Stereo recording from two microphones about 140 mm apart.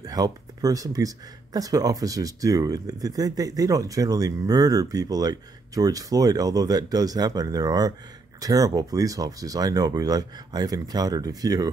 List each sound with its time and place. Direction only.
0.0 s speech: 25° right (ahead or behind)